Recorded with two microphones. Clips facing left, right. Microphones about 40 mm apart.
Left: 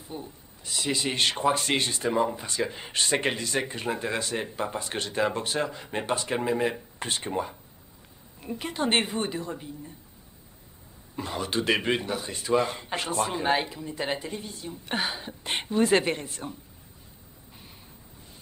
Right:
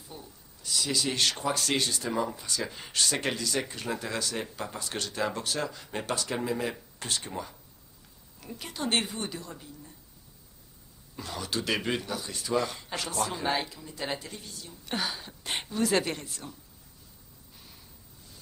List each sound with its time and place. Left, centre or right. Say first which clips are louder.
0.1 s speech: left 8 dB; left
11.1 s speech: left 5 dB; left